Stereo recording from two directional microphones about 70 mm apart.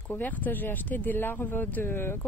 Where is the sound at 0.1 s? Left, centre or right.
Left.